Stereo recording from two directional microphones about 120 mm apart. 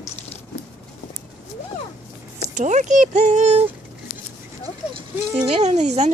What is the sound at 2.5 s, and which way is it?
Speech, 85° right.